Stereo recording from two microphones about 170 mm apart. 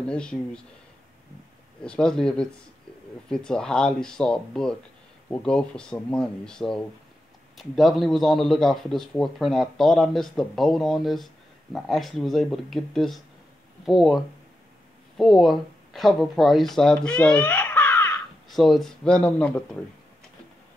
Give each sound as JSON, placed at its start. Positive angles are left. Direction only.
{"t": 0.0, "sound": "a man's voice", "side_deg": 5}
{"t": 1.8, "sound": "a man's voice", "side_deg": 5}
{"t": 18.5, "sound": "a man's voice", "side_deg": 0}